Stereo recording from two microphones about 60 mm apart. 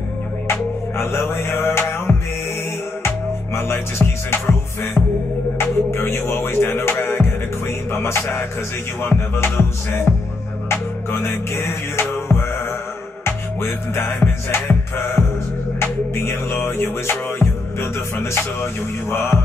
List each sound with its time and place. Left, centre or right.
0.5 s music: left
3.5 s music: left
5.6 s music: left
11.1 s music: left